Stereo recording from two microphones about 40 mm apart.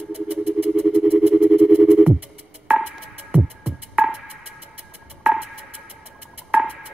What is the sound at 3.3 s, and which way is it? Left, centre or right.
Music, right.